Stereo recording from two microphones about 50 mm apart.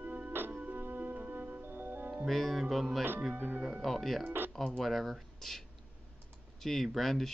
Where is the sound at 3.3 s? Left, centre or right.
Right.